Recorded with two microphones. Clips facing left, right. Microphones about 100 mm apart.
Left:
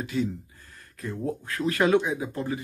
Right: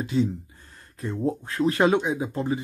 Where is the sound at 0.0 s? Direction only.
25° right (ahead or behind).